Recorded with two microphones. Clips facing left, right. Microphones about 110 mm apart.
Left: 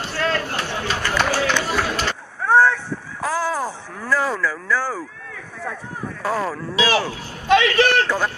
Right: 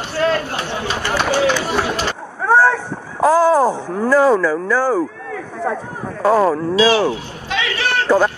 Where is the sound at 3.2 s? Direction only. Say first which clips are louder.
Right 11 dB; 45° right (ahead or behind).